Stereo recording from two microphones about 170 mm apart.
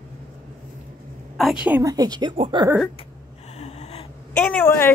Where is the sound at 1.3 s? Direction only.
Centre (ahead or behind).